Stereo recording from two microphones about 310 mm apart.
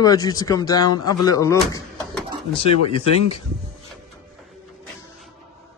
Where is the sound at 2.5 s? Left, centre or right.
Centre.